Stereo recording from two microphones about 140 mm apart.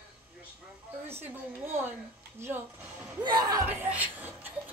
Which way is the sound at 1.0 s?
15° right (ahead or behind).